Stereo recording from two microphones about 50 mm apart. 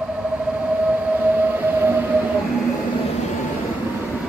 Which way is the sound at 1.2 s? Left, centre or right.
Right.